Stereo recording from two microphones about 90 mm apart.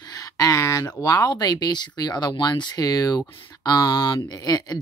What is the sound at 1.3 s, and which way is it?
Speech, 50° left (ahead or behind).